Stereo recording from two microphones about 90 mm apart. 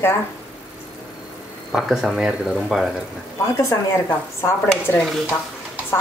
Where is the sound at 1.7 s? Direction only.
5° right (ahead or behind).